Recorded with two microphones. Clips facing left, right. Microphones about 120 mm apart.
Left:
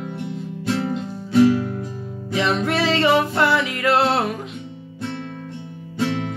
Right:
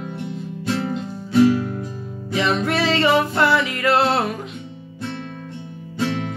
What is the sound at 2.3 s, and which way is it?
Music, 20° left (ahead or behind).